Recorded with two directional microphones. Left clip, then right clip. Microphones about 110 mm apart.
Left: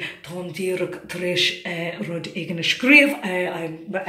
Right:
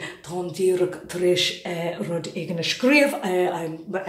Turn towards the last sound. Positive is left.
turn(degrees=-25)  # may be behind; listen again after turning